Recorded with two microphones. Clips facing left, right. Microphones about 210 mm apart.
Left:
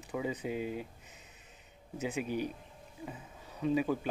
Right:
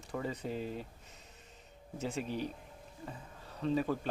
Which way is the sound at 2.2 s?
30° right (ahead or behind).